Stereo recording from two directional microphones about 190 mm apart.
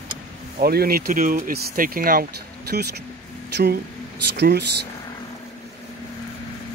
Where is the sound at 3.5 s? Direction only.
55° right (ahead or behind).